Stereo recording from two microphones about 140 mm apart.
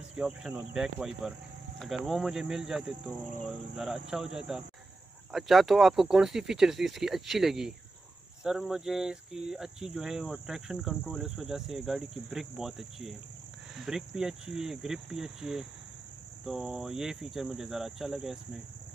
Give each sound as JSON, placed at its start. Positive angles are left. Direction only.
{"t": 0.1, "sound": "speech", "side_deg": -5}
{"t": 3.1, "sound": "cricket", "side_deg": 10}
{"t": 3.7, "sound": "speech", "side_deg": -5}